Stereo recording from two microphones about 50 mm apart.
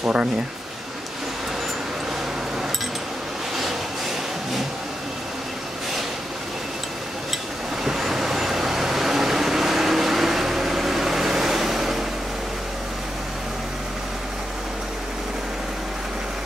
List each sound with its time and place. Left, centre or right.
0.0 s speech: right
7.8 s vehicle: centre